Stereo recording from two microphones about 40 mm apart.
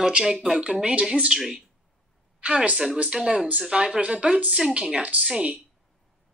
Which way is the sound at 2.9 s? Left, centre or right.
Right.